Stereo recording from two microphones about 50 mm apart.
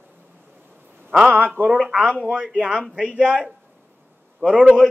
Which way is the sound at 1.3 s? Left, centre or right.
Right.